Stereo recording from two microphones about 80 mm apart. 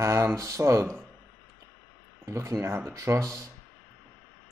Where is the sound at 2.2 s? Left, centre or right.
Right.